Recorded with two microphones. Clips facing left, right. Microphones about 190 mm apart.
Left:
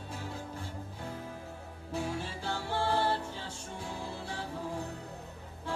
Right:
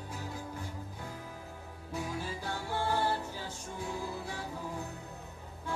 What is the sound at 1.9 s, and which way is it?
Music, 30° left (ahead or behind).